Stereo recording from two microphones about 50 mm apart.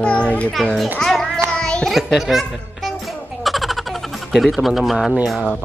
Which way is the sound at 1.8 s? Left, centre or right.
Centre.